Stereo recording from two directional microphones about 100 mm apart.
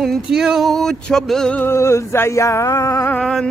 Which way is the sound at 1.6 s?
25° left (ahead or behind).